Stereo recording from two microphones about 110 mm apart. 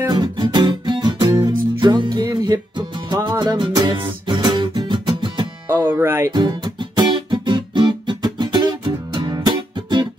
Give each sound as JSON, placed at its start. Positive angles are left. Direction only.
{"t": 0.1, "sound": "music", "side_deg": -45}
{"t": 5.7, "sound": "music", "side_deg": -20}
{"t": 6.3, "sound": "music", "side_deg": -45}